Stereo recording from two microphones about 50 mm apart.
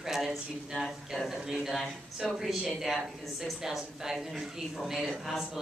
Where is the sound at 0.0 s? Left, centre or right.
Centre.